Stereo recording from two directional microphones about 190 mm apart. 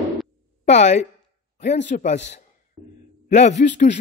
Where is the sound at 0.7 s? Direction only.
35° left (ahead or behind).